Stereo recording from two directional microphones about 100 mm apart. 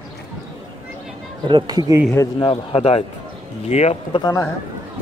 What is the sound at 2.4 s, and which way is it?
Speech, 65° left (ahead or behind).